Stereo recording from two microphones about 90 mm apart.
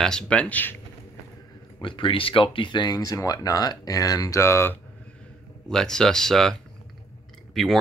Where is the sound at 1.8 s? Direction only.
70° left (ahead or behind); by 4.4 s 40° left (ahead or behind).